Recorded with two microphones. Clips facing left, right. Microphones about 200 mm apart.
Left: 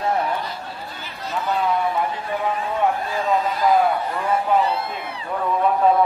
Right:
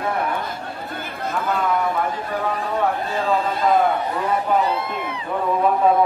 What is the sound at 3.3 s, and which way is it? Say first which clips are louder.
Speech: left 1 dB; 25° right (ahead or behind).